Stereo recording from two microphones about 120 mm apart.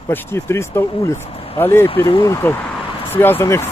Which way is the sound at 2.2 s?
20° left (ahead or behind).